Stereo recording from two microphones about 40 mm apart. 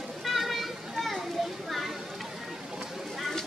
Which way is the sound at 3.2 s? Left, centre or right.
Centre.